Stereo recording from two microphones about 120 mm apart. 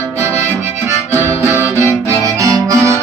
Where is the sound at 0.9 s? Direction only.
20° right (ahead or behind).